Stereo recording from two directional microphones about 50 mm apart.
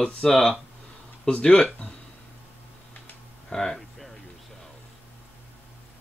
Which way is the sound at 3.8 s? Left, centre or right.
Centre.